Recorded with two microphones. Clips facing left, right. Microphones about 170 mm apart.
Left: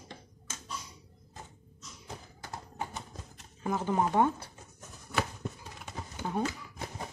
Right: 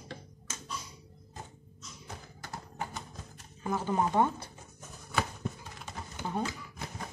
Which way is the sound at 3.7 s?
15° left (ahead or behind).